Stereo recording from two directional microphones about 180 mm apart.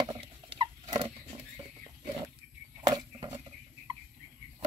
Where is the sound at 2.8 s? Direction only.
20° right (ahead or behind).